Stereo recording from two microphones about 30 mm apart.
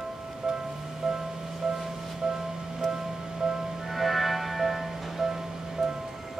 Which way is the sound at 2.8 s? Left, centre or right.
Centre.